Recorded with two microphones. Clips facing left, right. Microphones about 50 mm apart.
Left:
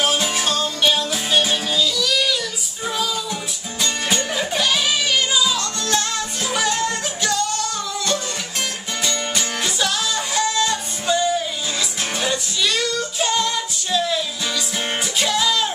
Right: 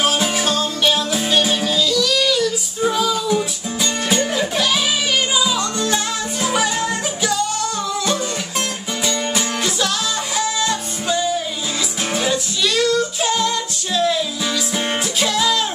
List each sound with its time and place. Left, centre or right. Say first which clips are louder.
0.0 s music: right 2 dB; centre
5.3 s music: right 2 dB; centre
9.0 s music: right 3 dB; centre